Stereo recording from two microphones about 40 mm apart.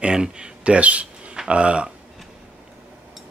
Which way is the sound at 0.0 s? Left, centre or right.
Right.